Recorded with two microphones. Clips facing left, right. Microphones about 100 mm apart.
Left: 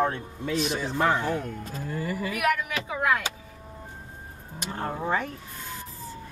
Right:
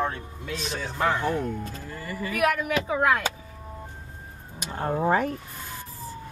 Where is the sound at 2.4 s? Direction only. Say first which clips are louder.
Right 4 dB; 35° right (ahead or behind).